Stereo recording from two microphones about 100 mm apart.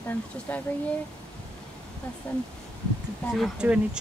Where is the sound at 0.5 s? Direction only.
20° left (ahead or behind).